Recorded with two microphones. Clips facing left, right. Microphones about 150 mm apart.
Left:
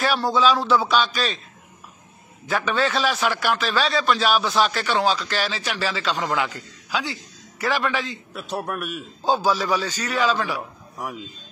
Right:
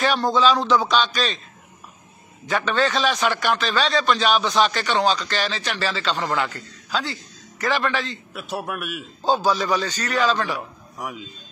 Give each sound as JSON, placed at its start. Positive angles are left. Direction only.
{"t": 0.0, "sound": "a man's voice", "side_deg": 5}
{"t": 2.4, "sound": "a man's voice", "side_deg": 5}
{"t": 8.3, "sound": "a man's voice", "side_deg": -5}
{"t": 9.2, "sound": "a man's voice", "side_deg": 10}